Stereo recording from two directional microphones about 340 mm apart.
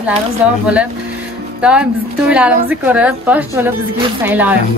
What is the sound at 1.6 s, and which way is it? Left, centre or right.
Speech, centre.